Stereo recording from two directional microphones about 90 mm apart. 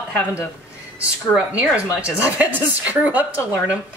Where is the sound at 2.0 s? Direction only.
15° right (ahead or behind).